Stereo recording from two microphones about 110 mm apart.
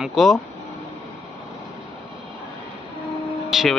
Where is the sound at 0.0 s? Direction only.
Centre (ahead or behind).